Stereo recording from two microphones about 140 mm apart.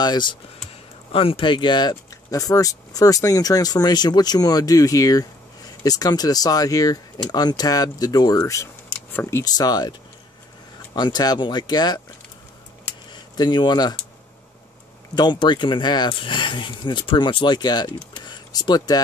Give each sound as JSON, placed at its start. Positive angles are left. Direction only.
{"t": 0.0, "sound": "speech", "side_deg": 30}
{"t": 11.0, "sound": "speech", "side_deg": 30}
{"t": 13.1, "sound": "speech", "side_deg": 35}
{"t": 15.1, "sound": "speech", "side_deg": 35}
{"t": 18.1, "sound": "a sound", "side_deg": 30}